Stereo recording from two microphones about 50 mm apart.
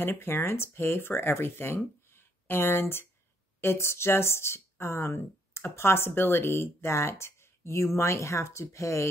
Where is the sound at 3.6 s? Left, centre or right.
Left.